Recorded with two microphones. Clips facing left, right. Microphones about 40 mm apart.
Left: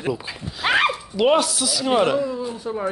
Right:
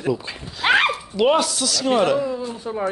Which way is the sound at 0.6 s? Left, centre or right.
Right.